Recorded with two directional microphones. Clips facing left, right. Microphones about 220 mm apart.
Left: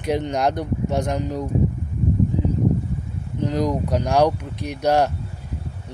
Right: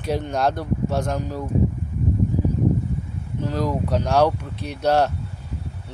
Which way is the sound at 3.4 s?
15° left (ahead or behind).